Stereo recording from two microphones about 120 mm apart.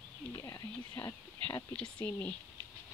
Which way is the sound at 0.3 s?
30° left (ahead or behind).